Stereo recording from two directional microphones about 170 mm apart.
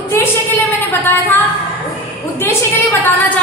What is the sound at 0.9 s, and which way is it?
Speech, 10° left (ahead or behind).